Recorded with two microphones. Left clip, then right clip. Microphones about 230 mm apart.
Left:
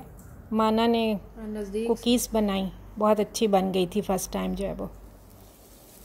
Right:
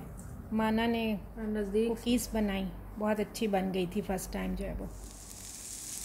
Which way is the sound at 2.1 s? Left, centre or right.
Left.